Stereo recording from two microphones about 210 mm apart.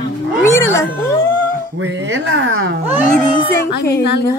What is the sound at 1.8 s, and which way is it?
Speech, 60° right (ahead or behind).